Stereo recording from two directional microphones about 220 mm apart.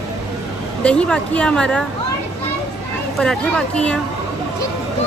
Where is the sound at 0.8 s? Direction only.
5° left (ahead or behind).